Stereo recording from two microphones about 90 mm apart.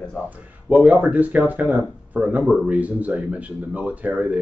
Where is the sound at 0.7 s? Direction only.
15° right (ahead or behind).